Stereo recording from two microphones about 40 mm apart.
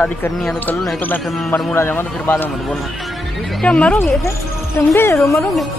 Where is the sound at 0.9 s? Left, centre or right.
Left.